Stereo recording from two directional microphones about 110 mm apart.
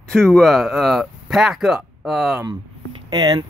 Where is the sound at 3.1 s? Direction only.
40° right (ahead or behind).